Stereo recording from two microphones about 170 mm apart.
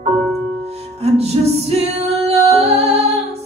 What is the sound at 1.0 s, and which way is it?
Music, 40° right (ahead or behind).